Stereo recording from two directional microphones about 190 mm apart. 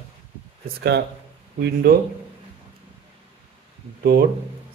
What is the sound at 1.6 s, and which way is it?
Speech, 55° right (ahead or behind).